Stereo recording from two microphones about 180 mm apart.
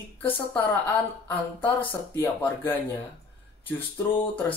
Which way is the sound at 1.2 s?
10° left (ahead or behind).